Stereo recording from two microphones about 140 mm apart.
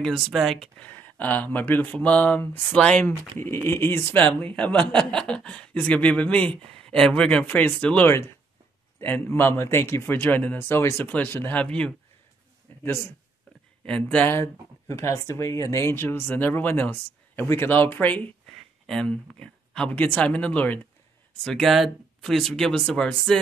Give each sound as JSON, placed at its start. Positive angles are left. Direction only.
{"t": 0.0, "sound": "speech", "side_deg": 0}
{"t": 12.7, "sound": "a sound", "side_deg": 15}
{"t": 13.8, "sound": "speech", "side_deg": 10}